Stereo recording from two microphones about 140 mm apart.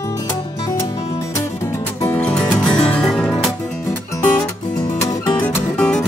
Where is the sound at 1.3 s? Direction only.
20° left (ahead or behind); by 3.5 s centre (ahead or behind).